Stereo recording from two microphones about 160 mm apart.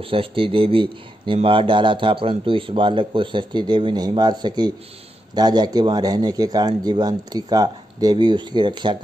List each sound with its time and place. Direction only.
0.0 s speech: 35° right (ahead or behind)